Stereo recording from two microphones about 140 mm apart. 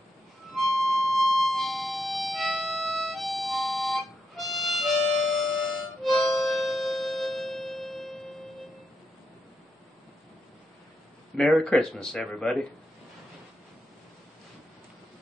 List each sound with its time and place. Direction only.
0.6 s music: centre (ahead or behind)
11.3 s speech: 5° left (ahead or behind)